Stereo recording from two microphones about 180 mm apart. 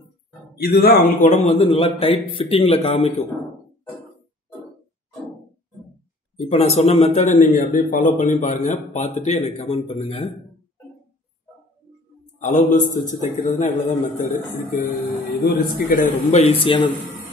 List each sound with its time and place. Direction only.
0.6 s speech: 60° left (ahead or behind)
1.3 s speech: 35° left (ahead or behind)
6.3 s speech: 35° left (ahead or behind)
12.4 s a man's voice: 45° left (ahead or behind); by 16.9 s 30° left (ahead or behind)